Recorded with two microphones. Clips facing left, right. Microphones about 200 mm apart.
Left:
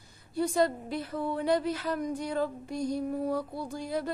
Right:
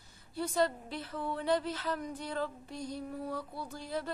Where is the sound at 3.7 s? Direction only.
15° left (ahead or behind).